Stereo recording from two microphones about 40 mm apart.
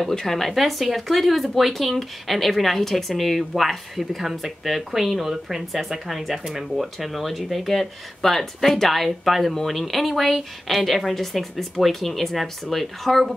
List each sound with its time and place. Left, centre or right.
0.1 s speech: centre